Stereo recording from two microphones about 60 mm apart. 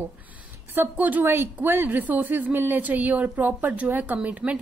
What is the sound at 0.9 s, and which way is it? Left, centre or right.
Speech, right.